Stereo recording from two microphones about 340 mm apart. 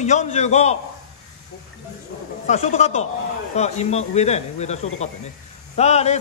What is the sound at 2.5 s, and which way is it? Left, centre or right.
A man's voice, centre.